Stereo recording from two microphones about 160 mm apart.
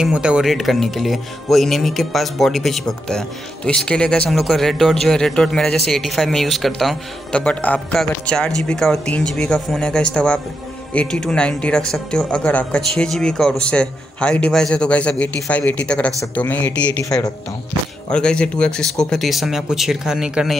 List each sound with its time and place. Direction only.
0.0 s speech: 5° right (ahead or behind)